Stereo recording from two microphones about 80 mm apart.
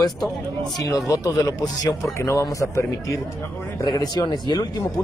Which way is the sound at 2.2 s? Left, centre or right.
Left.